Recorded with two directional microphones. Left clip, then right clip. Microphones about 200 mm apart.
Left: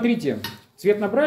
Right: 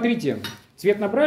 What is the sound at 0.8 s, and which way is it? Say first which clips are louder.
Speech: even; 15° right (ahead or behind).